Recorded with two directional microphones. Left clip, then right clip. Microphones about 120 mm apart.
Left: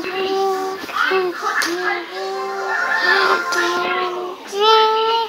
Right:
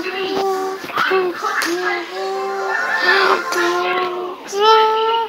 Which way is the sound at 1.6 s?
5° right (ahead or behind).